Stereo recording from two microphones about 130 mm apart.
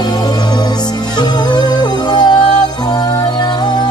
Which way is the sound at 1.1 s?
30° left (ahead or behind).